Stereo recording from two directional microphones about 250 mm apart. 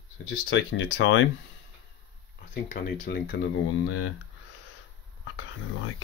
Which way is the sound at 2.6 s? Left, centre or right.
Left.